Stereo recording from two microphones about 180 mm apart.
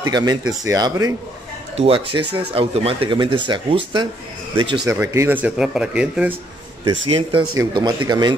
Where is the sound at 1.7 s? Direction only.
30° right (ahead or behind).